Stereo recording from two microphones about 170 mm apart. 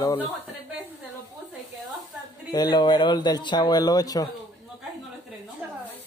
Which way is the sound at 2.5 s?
25° left (ahead or behind).